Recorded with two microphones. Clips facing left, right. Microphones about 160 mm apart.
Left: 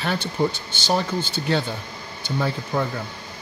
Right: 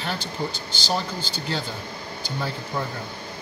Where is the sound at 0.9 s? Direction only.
60° left (ahead or behind).